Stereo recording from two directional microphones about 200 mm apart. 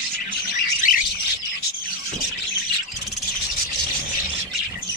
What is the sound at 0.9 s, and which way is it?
Bird, 40° left (ahead or behind).